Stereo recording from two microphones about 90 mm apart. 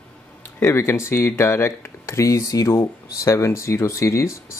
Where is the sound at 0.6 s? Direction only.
30° left (ahead or behind).